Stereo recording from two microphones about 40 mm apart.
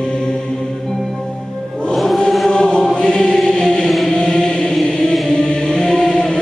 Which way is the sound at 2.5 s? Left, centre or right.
Left.